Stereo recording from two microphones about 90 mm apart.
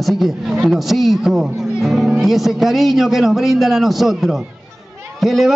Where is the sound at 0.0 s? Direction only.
Centre (ahead or behind).